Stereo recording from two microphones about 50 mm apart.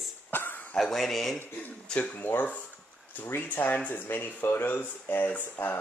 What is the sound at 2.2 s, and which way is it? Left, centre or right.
Speech, left.